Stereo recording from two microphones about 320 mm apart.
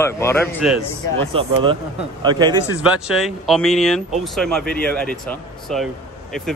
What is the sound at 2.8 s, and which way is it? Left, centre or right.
Speech, centre.